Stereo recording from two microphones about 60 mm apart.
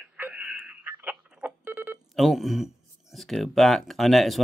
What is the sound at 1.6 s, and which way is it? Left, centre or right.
Telephone dialing, right.